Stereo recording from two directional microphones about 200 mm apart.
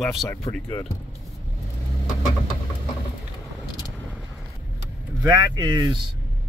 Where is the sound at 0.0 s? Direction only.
Centre (ahead or behind).